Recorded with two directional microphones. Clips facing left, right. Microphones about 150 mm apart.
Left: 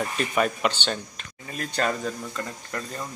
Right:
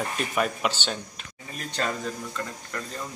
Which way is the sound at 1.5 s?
65° left (ahead or behind).